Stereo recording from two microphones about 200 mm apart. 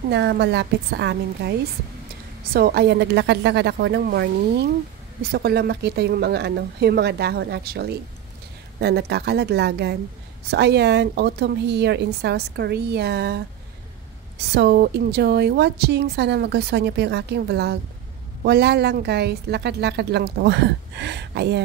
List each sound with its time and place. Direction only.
0.1 s a woman's voice: 55° right (ahead or behind)
14.4 s a woman's voice: 55° right (ahead or behind)